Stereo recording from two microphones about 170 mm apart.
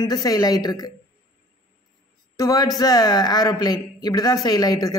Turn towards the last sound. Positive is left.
turn(degrees=20)  # may be behind; listen again after turning